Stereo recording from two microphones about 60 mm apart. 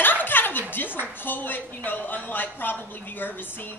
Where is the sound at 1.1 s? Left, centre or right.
Left.